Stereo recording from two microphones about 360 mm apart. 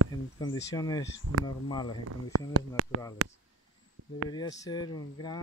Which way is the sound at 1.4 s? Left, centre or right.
Centre.